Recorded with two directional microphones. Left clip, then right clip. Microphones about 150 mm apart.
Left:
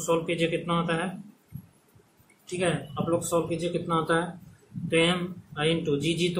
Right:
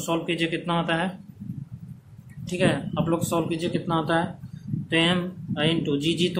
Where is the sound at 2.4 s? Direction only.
60° right (ahead or behind); by 6.2 s 40° right (ahead or behind).